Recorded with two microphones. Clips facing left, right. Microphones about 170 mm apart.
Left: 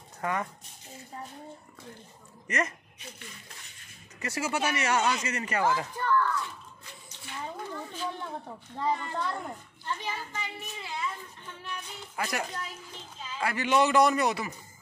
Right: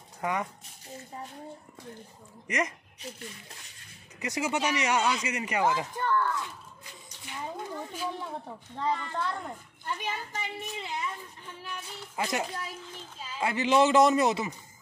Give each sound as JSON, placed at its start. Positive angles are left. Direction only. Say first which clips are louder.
{"t": 0.2, "sound": "speech", "louder": "even", "side_deg": -10}
{"t": 2.4, "sound": "speech", "louder": "even", "side_deg": -15}
{"t": 4.2, "sound": "speech", "louder": "right 1 dB", "side_deg": -15}
{"t": 7.5, "sound": "a child's voice", "louder": "right 1 dB", "side_deg": -15}
{"t": 8.8, "sound": "a woman's voice", "louder": "even", "side_deg": 10}
{"t": 9.8, "sound": "a child's voice", "louder": "right 1 dB", "side_deg": -15}
{"t": 12.2, "sound": "a child's voice", "louder": "right 2 dB", "side_deg": -20}